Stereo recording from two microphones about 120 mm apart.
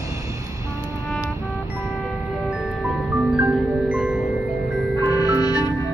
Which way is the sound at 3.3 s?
10° right (ahead or behind).